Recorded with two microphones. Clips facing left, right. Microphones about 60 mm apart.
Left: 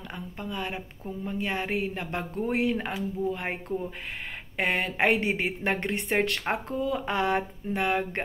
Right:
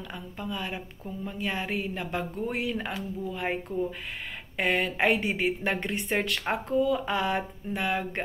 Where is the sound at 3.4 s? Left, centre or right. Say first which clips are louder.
Right 2 dB; left.